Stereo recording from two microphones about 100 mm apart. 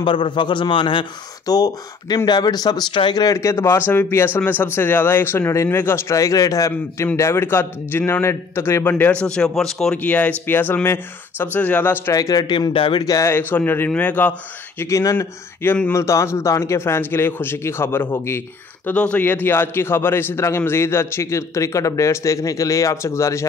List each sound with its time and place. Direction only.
0.0 s a man's voice: 55° left (ahead or behind)
1.4 s speech: 40° left (ahead or behind)
3.3 s a man's voice: 30° left (ahead or behind)
6.1 s a man's voice: 35° left (ahead or behind); by 9.9 s 5° left (ahead or behind)
9.9 s a man's voice: 15° left (ahead or behind)
12.1 s a man's voice: 35° left (ahead or behind)
12.7 s a man's voice: 60° left (ahead or behind)
13.0 s a man's voice: 35° left (ahead or behind)
13.3 s a man's voice: 20° left (ahead or behind)
14.8 s a man's voice: 30° left (ahead or behind)
18.9 s a man's voice: 15° left (ahead or behind); by 23.4 s 30° left (ahead or behind)